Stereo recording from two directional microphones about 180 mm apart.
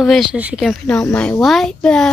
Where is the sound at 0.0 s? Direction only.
Centre (ahead or behind).